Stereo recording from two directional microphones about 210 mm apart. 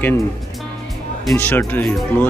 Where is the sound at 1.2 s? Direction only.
10° left (ahead or behind).